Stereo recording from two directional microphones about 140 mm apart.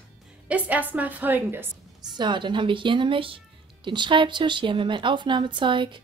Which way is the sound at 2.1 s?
35° right (ahead or behind).